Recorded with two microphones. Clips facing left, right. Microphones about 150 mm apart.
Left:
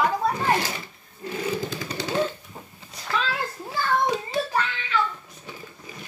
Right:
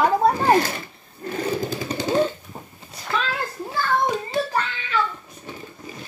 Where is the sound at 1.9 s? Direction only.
45° right (ahead or behind).